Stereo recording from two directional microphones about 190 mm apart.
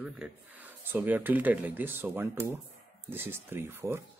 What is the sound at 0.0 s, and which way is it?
Speech, 10° right (ahead or behind).